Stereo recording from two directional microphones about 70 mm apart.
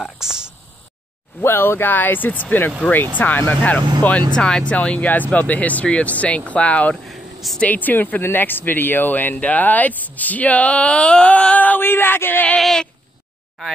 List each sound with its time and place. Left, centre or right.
0.0 s a sound: centre
1.4 s speech: left
4.4 s speech: centre
7.1 s a sound: centre
7.6 s speech: left
12.4 s speech: centre